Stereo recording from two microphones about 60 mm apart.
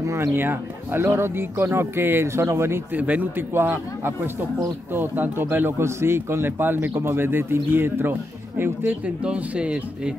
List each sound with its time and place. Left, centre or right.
0.0 s speech: right
0.3 s speech: right
2.9 s speech: right
3.3 s speech: right
9.0 s speech: centre